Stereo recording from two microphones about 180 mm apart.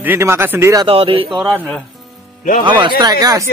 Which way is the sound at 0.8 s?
30° right (ahead or behind).